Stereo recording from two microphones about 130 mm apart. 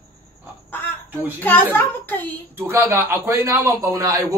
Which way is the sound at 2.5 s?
20° right (ahead or behind).